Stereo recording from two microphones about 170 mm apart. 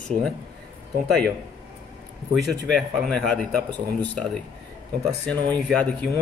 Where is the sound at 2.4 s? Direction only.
Centre (ahead or behind).